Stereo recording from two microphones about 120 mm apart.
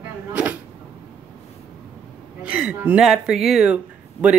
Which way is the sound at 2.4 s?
10° right (ahead or behind).